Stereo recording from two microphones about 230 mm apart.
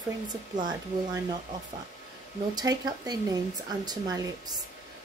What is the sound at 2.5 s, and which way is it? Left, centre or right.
Speech, centre.